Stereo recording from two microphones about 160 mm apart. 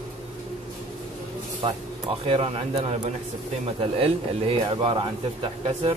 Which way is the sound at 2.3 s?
35° right (ahead or behind).